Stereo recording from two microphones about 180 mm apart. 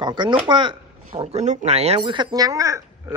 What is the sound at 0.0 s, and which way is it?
Speech, 25° right (ahead or behind).